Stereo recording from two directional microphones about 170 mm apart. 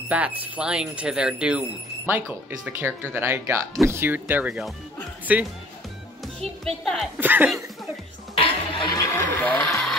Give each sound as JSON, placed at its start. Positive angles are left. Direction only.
{"t": 0.1, "sound": "speech", "side_deg": -10}
{"t": 6.2, "sound": "a child's voice", "side_deg": 0}
{"t": 7.2, "sound": "speech", "side_deg": -10}
{"t": 8.4, "sound": "a sound", "side_deg": 30}
{"t": 9.4, "sound": "speech", "side_deg": 5}